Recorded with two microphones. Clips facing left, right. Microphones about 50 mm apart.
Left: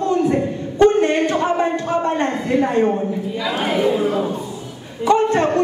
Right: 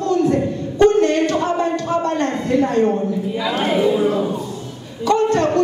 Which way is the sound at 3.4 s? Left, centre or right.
Centre.